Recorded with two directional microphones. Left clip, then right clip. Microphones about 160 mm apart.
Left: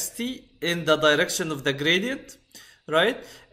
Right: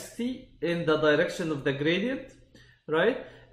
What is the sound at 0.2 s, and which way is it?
Speech, 15° left (ahead or behind).